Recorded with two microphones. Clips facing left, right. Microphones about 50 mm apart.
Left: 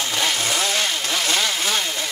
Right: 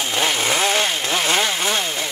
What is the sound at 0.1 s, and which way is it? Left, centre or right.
Chainsaw, right.